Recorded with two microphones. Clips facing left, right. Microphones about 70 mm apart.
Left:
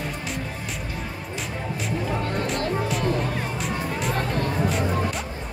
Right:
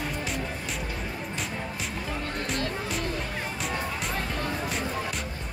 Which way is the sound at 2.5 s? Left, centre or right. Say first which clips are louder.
Left 5 dB; centre.